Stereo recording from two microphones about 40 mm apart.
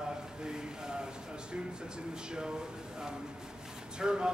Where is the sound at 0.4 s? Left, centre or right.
Centre.